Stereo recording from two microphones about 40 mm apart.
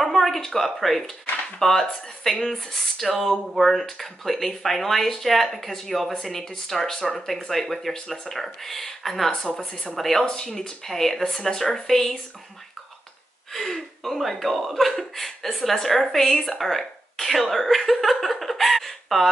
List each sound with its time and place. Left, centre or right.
0.0 s a sound: centre
0.4 s a woman's voice: centre
9.9 s speech: centre
10.6 s speech: centre
10.9 s a woman's voice: centre
13.5 s speech: centre
16.4 s a sound: centre